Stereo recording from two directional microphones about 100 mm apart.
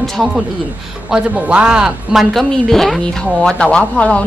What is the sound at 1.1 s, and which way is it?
Speech, 10° right (ahead or behind).